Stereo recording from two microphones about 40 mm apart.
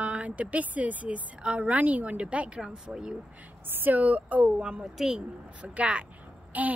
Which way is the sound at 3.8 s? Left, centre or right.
Right.